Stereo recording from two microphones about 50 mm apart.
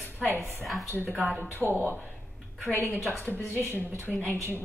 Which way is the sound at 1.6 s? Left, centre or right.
Left.